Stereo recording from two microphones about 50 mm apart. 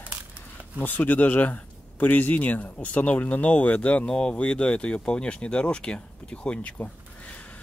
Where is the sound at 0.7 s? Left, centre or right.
Left.